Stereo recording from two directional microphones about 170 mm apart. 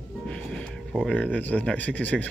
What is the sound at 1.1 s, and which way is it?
Speech, 10° left (ahead or behind).